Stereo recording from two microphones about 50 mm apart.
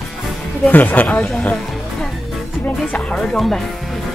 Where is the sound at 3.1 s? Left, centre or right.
Centre.